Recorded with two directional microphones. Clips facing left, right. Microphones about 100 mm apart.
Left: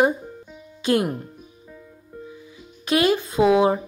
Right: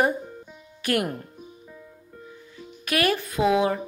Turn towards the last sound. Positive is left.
turn(degrees=25)  # may be behind; listen again after turning